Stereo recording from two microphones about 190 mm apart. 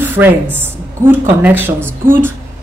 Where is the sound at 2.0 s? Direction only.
45° right (ahead or behind).